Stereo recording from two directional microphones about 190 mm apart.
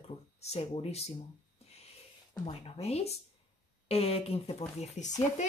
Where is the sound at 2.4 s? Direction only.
30° left (ahead or behind).